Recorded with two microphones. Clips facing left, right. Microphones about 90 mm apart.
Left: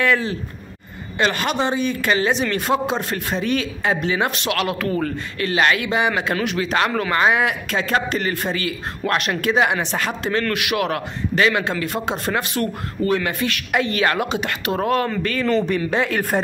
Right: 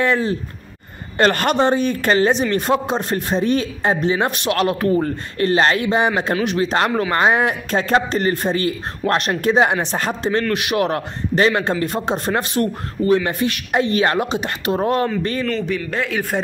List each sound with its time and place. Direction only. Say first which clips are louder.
0.0 s a man's voice: right 1 dB; 30° right (ahead or behind)
1.1 s a man's voice: right 4 dB; 50° right (ahead or behind); by 15.0 s 25° right (ahead or behind)
15.7 s speech: left 2 dB; 5° left (ahead or behind)